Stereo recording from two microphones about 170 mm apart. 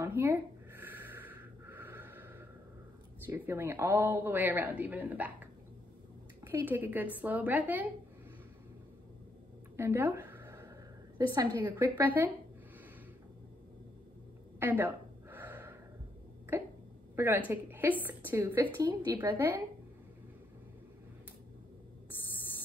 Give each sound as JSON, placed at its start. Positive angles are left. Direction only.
{"t": 0.0, "sound": "a sound", "side_deg": -15}
{"t": 3.3, "sound": "a man's voice", "side_deg": -15}
{"t": 9.8, "sound": "a sound", "side_deg": -10}
{"t": 11.1, "sound": "a man's voice", "side_deg": -15}
{"t": 14.6, "sound": "gasp", "side_deg": -10}
{"t": 16.5, "sound": "a man's voice", "side_deg": -15}
{"t": 19.3, "sound": "a man's voice", "side_deg": -10}